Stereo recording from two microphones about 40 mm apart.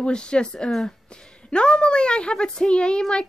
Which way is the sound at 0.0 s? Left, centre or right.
Left.